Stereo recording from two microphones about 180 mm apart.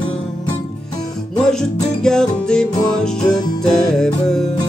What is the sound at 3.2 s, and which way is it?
Music, 20° left (ahead or behind).